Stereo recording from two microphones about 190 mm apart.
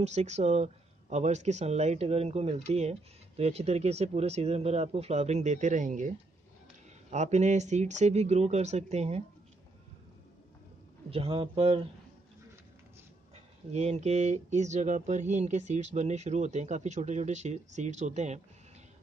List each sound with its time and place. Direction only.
0.0 s speech: 35° right (ahead or behind)
11.1 s speech: 30° right (ahead or behind)
13.7 s speech: 35° right (ahead or behind)